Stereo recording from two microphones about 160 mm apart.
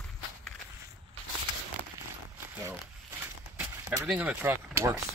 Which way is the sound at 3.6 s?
15° right (ahead or behind).